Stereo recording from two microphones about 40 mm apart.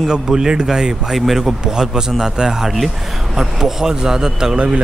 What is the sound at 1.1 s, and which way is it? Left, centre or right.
Speech, centre.